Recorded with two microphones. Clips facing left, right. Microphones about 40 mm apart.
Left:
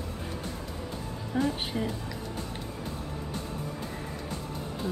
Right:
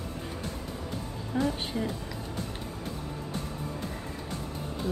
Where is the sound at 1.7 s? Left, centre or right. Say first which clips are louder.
Even; left.